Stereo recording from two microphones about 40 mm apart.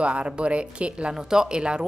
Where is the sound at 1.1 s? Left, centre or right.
Centre.